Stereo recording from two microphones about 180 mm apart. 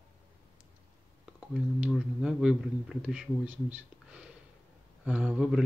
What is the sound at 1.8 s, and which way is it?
Speech, 5° right (ahead or behind).